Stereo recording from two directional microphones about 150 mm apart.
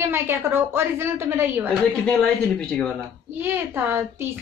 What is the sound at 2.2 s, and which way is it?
Speech, 5° left (ahead or behind).